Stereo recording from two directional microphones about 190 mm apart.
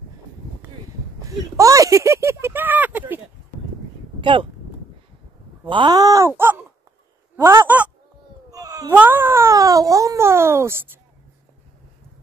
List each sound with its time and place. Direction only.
1.2 s speech: 15° right (ahead or behind)
4.2 s speech: 25° right (ahead or behind)
5.7 s speech: 25° right (ahead or behind); by 7.9 s 10° right (ahead or behind)
8.5 s cat: 20° right (ahead or behind)
8.9 s speech: 10° right (ahead or behind)